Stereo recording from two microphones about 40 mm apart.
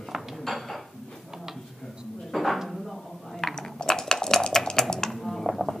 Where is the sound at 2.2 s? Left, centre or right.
Centre.